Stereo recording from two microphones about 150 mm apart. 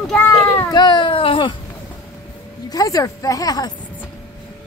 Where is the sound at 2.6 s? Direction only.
25° left (ahead or behind).